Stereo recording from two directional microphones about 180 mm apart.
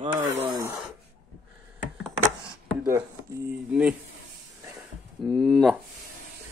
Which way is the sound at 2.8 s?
15° right (ahead or behind).